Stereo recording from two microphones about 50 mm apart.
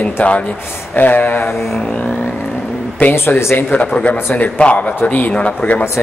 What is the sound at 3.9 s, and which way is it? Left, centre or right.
Speech, left.